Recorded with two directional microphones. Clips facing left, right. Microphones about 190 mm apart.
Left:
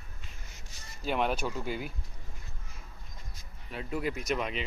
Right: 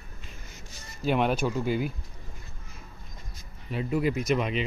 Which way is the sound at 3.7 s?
5° right (ahead or behind).